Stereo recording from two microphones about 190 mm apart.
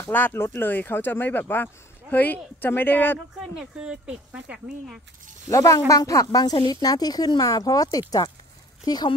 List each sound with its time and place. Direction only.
0.0 s speech: 10° left (ahead or behind)
3.3 s speech: 5° right (ahead or behind)
5.5 s speech: 15° left (ahead or behind)